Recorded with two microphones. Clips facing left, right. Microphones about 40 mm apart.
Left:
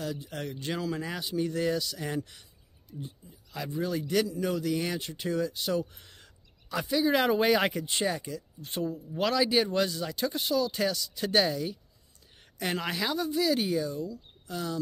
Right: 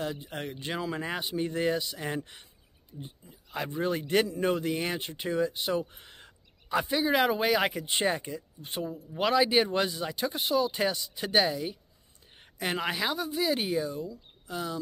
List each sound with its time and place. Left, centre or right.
0.0 s a man's voice: right
7.1 s speech: centre
7.8 s speech: right
8.6 s speech: centre